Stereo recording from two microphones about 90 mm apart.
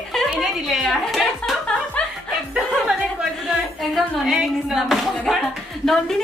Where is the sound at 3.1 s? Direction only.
Centre (ahead or behind).